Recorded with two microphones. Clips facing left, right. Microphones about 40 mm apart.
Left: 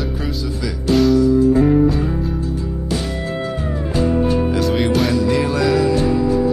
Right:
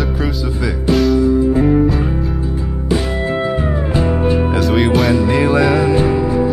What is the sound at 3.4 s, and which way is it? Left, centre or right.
Music, right.